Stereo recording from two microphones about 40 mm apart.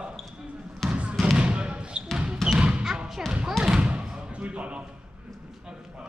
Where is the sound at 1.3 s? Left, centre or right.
Right.